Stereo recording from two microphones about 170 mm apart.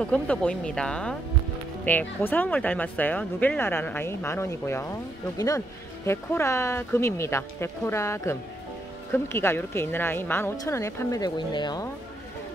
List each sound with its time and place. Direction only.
0.0 s speech: 5° left (ahead or behind)
6.0 s speech: 15° left (ahead or behind)